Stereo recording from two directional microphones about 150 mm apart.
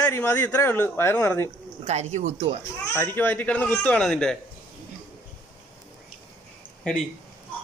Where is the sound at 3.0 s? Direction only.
15° left (ahead or behind).